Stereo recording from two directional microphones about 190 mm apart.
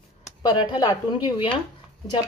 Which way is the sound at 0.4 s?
20° left (ahead or behind).